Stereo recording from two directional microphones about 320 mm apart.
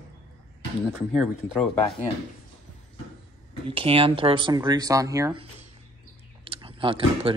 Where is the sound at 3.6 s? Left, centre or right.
Centre.